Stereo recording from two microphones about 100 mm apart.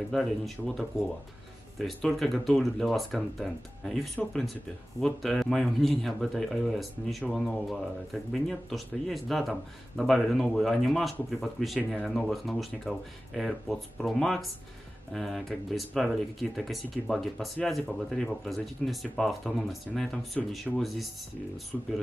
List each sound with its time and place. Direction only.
0.1 s speech: 5° left (ahead or behind)